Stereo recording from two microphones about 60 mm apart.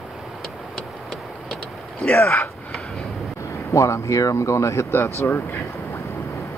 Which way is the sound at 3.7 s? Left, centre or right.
Left.